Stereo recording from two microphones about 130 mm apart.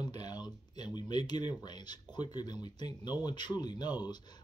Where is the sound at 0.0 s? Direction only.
30° left (ahead or behind).